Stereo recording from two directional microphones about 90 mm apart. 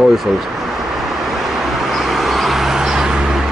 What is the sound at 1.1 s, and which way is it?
Vehicle, centre (ahead or behind).